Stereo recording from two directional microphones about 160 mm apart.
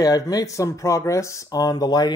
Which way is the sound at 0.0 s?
20° left (ahead or behind).